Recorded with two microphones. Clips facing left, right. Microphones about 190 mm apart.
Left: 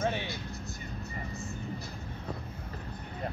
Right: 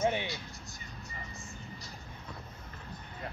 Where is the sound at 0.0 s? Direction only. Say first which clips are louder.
Right 1 dB; 15° right (ahead or behind).